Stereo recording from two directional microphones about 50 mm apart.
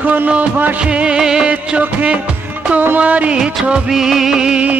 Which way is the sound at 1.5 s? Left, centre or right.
Right.